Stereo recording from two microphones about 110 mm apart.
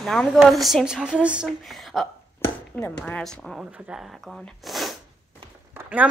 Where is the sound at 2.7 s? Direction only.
15° left (ahead or behind); by 5.0 s centre (ahead or behind).